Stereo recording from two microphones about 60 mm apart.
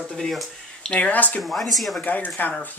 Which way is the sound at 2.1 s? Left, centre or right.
Left.